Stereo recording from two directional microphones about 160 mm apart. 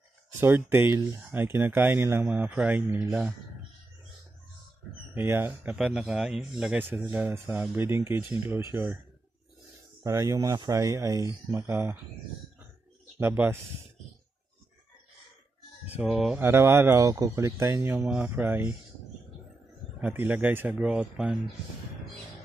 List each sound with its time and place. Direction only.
0.4 s speech: 15° right (ahead or behind)
5.1 s speech: 15° right (ahead or behind)
10.0 s speech: 20° right (ahead or behind)
13.2 s speech: 15° right (ahead or behind)
15.9 s speech: 5° right (ahead or behind)
16.3 s speech: 15° right (ahead or behind)
20.0 s speech: 10° right (ahead or behind)